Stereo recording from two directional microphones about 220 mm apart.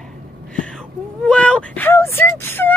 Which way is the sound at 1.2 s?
5° left (ahead or behind).